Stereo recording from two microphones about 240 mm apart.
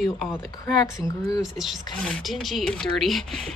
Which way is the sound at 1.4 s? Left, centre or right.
Centre.